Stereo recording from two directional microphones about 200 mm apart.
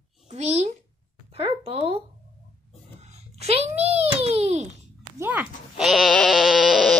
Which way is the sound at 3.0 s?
30° right (ahead or behind).